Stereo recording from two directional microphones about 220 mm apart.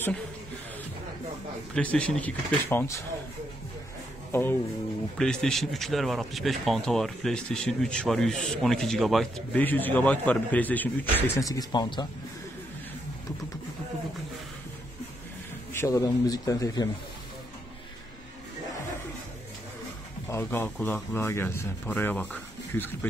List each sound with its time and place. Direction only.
1.7 s speech: 5° left (ahead or behind)
4.3 s speech: 10° left (ahead or behind)
15.7 s speech: 15° left (ahead or behind)
20.2 s speech: 10° left (ahead or behind)